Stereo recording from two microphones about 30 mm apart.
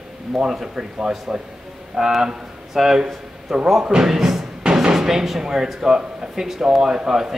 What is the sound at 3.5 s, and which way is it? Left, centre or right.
Speech, right.